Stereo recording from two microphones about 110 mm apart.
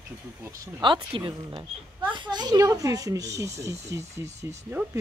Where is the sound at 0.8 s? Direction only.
45° right (ahead or behind).